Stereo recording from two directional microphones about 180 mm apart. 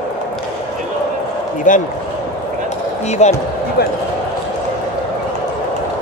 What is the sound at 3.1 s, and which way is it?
Speech, 40° left (ahead or behind).